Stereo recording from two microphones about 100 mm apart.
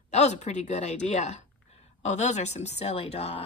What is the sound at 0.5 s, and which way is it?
Speech, 90° left.